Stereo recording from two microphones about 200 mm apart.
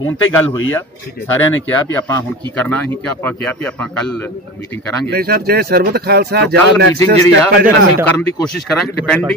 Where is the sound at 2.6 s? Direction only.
10° left (ahead or behind).